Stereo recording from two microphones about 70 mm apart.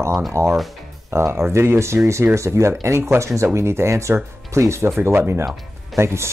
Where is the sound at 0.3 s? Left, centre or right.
Right.